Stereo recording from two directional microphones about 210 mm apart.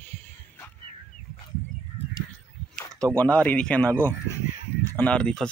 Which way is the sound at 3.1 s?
5° left (ahead or behind).